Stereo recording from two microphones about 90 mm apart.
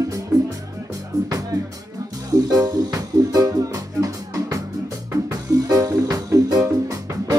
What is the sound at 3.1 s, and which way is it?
Music, 45° right (ahead or behind).